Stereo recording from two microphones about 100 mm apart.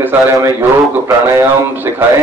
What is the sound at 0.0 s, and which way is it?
A man's voice, 25° right (ahead or behind).